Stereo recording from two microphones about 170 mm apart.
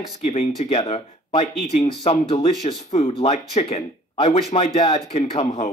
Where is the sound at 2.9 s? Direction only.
40° left (ahead or behind).